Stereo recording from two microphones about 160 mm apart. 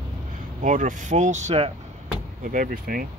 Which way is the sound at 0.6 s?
50° right (ahead or behind).